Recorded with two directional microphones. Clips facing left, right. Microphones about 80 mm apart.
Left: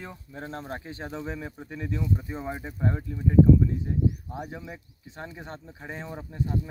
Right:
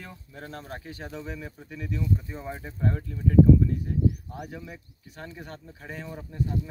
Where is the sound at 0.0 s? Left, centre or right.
Left.